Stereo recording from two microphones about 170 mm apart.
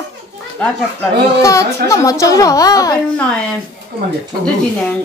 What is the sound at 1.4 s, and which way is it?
Speech, 20° left (ahead or behind).